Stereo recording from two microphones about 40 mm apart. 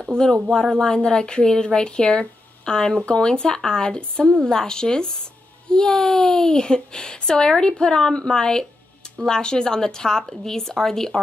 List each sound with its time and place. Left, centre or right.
0.2 s speech: centre